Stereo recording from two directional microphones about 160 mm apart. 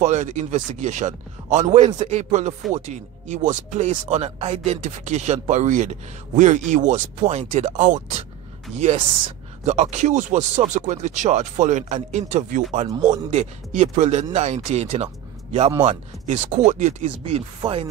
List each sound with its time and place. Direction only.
0.0 s speech: 45° right (ahead or behind)
17.2 s chopping: 35° right (ahead or behind)